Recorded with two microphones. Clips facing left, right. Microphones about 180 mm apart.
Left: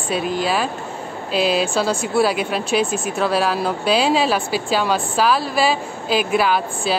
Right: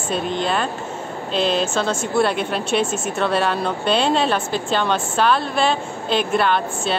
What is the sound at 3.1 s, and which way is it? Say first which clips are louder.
Speech: left 1 dB; 5° left (ahead or behind).